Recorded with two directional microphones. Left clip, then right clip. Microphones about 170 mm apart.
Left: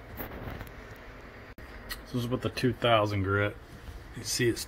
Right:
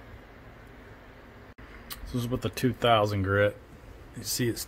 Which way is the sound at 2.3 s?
35° right (ahead or behind).